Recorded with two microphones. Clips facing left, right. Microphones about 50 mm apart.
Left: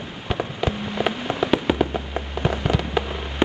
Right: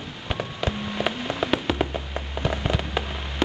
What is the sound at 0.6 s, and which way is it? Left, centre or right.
Fireworks, centre.